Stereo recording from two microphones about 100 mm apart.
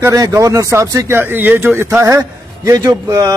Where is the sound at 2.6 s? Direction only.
35° right (ahead or behind).